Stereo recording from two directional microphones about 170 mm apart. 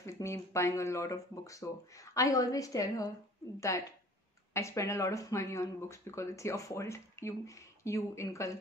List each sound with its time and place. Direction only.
0.0 s a woman's voice: 15° left (ahead or behind)